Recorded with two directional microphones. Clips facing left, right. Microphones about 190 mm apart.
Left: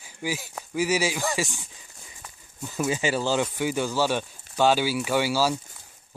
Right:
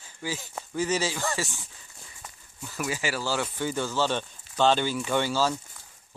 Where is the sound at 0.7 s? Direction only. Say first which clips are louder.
Left 3 dB; 10° left (ahead or behind).